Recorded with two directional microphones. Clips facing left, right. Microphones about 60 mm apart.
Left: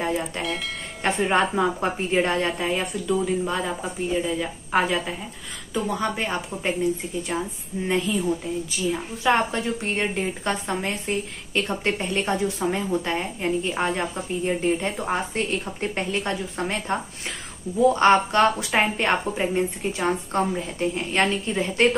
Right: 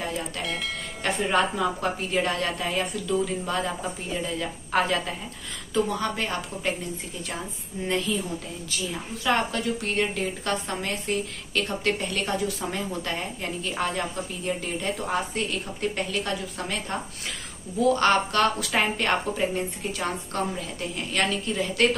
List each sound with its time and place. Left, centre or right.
1.0 s a woman's voice: left
8.1 s speech: centre
9.2 s a woman's voice: left